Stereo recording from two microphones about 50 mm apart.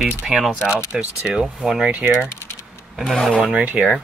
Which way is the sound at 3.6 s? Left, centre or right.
Right.